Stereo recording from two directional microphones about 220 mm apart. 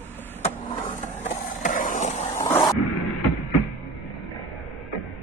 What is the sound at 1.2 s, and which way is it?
Vehicle, 35° left (ahead or behind).